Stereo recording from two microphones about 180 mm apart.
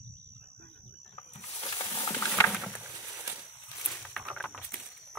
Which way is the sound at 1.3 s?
30° left (ahead or behind).